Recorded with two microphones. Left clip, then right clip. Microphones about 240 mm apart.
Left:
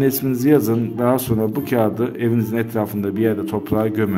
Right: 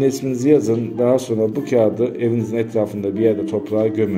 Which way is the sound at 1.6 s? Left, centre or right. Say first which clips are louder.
Right 4 dB; left.